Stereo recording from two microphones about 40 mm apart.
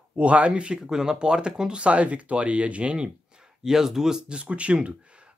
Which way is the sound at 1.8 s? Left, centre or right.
Right.